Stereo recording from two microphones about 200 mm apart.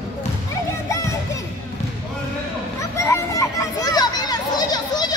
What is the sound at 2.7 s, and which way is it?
Children playing, 15° left (ahead or behind).